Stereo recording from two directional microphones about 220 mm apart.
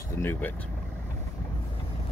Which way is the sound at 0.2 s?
10° left (ahead or behind).